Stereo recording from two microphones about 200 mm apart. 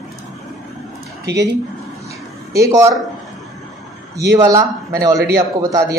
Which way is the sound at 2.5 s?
15° right (ahead or behind).